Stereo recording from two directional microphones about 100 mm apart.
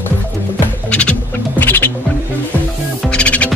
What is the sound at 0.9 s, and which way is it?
Music, 10° left (ahead or behind).